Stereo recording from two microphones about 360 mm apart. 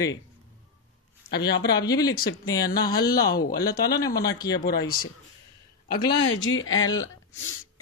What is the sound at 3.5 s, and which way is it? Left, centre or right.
Speech, centre.